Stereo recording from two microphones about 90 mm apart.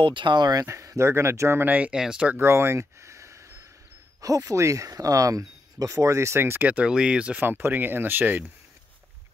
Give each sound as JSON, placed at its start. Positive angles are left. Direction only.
{"t": 0.0, "sound": "speech", "side_deg": -65}
{"t": 0.7, "sound": "speech", "side_deg": -35}
{"t": 2.3, "sound": "a sound", "side_deg": -30}
{"t": 4.5, "sound": "speech", "side_deg": -35}